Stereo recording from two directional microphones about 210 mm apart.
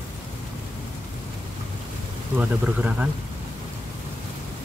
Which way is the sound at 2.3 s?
5° right (ahead or behind).